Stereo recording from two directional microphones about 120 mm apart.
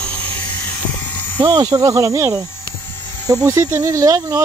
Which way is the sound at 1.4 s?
35° right (ahead or behind).